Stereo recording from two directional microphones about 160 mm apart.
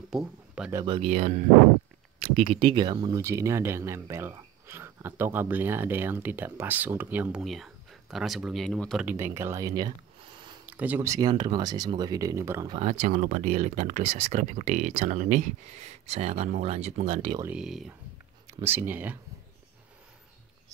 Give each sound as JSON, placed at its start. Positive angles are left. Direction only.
{"t": 0.1, "sound": "a sound", "side_deg": -5}
{"t": 0.8, "sound": "a man's voice", "side_deg": -35}
{"t": 1.1, "sound": "speech", "side_deg": -50}
{"t": 2.3, "sound": "speech", "side_deg": -35}
{"t": 7.4, "sound": "speech", "side_deg": 0}
{"t": 9.0, "sound": "speech", "side_deg": -15}
{"t": 10.7, "sound": "speech", "side_deg": -10}
{"t": 12.7, "sound": "speech", "side_deg": -45}
{"t": 17.6, "sound": "speech", "side_deg": -5}
{"t": 18.5, "sound": "speech", "side_deg": -15}